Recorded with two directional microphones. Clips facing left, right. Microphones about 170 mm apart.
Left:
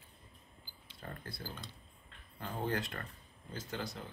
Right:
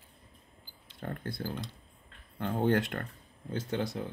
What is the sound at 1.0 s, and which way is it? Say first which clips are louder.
Speech: right 9 dB; 65° right (ahead or behind).